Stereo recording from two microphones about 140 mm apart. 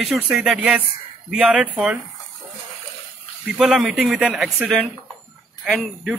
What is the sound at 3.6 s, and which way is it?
Speech, centre (ahead or behind).